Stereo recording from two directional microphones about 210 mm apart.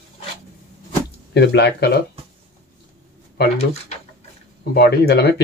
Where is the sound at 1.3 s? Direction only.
55° left (ahead or behind).